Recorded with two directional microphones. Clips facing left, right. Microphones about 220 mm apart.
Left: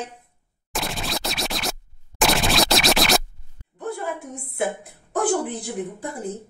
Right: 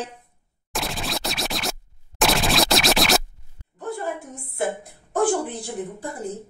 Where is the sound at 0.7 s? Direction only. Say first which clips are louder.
Even; centre (ahead or behind).